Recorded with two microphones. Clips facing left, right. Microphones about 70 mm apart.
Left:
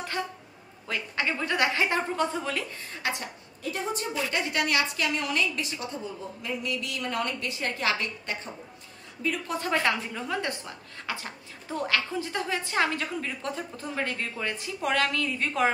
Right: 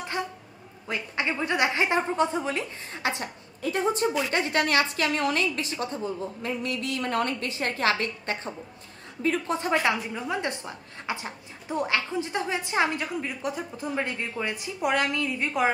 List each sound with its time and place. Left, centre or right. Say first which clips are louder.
0.2 s a sound: right 1 dB; centre
0.8 s a woman's voice: right 1 dB; right
3.7 s a woman's voice: right 6 dB; right
9.6 s a woman's voice: right 2 dB; centre